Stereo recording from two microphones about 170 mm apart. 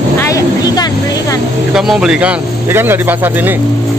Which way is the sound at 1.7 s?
5° right (ahead or behind).